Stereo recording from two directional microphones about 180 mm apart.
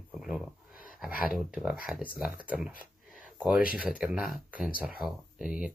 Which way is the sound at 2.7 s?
50° left (ahead or behind).